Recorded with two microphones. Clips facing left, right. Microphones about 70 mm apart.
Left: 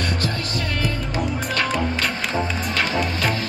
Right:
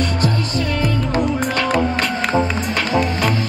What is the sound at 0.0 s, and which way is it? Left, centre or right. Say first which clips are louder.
Music: right 5 dB; right.